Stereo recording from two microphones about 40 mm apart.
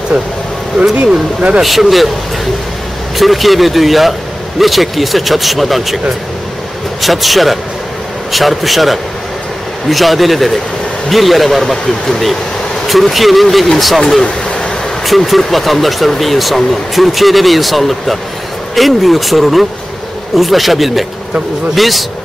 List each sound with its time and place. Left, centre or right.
1.6 s speech: centre
3.2 s speech: centre
7.0 s speech: centre
14.2 s vehicle: left
15.0 s speech: centre